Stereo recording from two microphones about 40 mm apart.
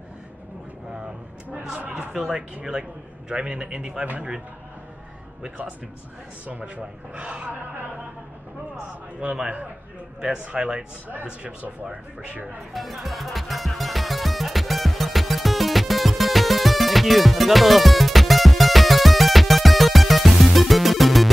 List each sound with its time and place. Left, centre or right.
1.5 s a sound: right
2.1 s speech: centre
2.6 s a man's voice: centre
6.4 s speech: right
7.2 s a man's voice: right
8.7 s a man's voice: right
11.9 s speech: right
12.7 s music: centre